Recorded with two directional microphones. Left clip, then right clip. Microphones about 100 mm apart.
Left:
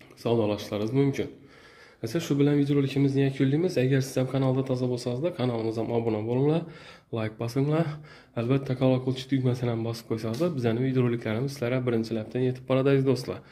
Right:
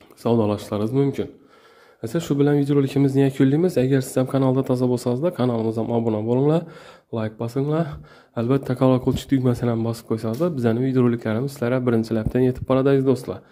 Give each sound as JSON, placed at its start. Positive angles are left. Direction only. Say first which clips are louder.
{"t": 0.2, "sound": "speech", "louder": "right 5 dB", "side_deg": -50}
{"t": 0.9, "sound": "speech", "louder": "right 3 dB", "side_deg": -35}
{"t": 2.6, "sound": "speech", "louder": "right 6 dB", "side_deg": -65}
{"t": 5.2, "sound": "speech", "louder": "right 6 dB", "side_deg": -50}
{"t": 6.2, "sound": "speech", "louder": "right 6 dB", "side_deg": -50}
{"t": 7.2, "sound": "speech", "louder": "right 4 dB", "side_deg": -30}
{"t": 8.5, "sound": "speech", "louder": "right 6 dB", "side_deg": -50}
{"t": 8.7, "sound": "speech", "louder": "right 7 dB", "side_deg": -75}
{"t": 9.7, "sound": "speech", "louder": "right 6 dB", "side_deg": -50}
{"t": 12.0, "sound": "speech", "louder": "right 8 dB", "side_deg": -75}
{"t": 12.6, "sound": "speech", "louder": "right 4 dB", "side_deg": -40}